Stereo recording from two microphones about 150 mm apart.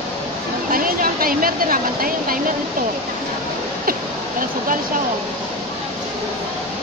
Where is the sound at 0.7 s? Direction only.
70° right (ahead or behind).